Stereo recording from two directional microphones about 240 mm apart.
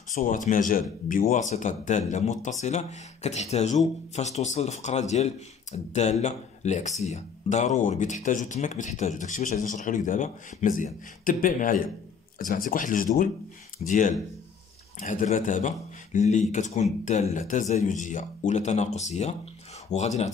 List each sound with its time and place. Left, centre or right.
0.1 s speech: left